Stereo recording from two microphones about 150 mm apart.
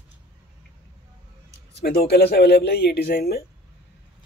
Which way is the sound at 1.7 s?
90° left.